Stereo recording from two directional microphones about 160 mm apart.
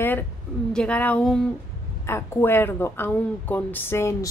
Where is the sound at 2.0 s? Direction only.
15° left (ahead or behind).